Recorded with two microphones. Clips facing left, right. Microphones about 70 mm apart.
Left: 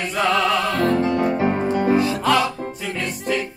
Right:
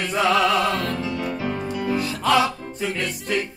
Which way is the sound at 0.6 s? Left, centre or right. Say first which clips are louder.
Left 5 dB; left.